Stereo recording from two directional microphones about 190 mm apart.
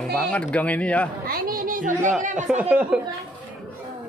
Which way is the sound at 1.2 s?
50° right (ahead or behind).